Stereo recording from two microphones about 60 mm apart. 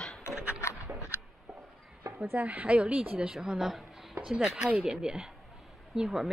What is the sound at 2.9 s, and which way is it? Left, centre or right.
Speech, centre.